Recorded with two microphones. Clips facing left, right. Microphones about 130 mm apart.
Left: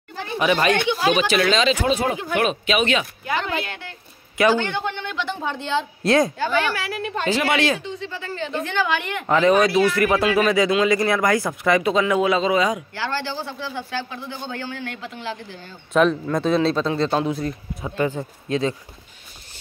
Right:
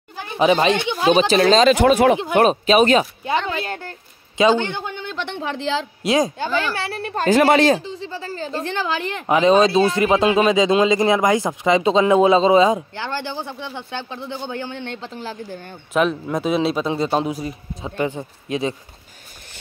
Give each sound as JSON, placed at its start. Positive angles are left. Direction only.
{"t": 0.4, "sound": "speech", "side_deg": -25}
{"t": 1.8, "sound": "speech", "side_deg": -65}
{"t": 2.3, "sound": "a woman's voice", "side_deg": -40}
{"t": 5.2, "sound": "speech", "side_deg": -85}
{"t": 6.0, "sound": "speech", "side_deg": -15}
{"t": 6.5, "sound": "speech", "side_deg": -30}
{"t": 7.1, "sound": "speech", "side_deg": -45}
{"t": 15.9, "sound": "speech", "side_deg": -5}